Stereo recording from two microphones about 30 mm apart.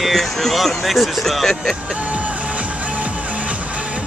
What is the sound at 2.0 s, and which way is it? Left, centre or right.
Music, right.